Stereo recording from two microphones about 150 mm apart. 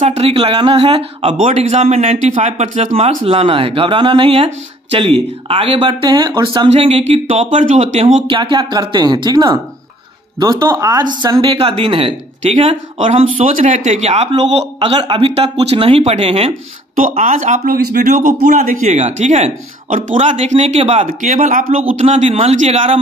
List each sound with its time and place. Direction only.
0.0 s a man's voice: 45° right (ahead or behind)
8.3 s speech: 35° right (ahead or behind)
11.5 s speech: 35° right (ahead or behind)
17.2 s speech: 60° right (ahead or behind)
20.3 s speech: 45° right (ahead or behind); by 21.7 s 60° right (ahead or behind)
21.9 s speech: 50° right (ahead or behind)